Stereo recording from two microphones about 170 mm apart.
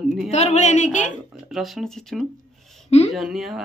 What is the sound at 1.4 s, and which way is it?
Speech, centre (ahead or behind).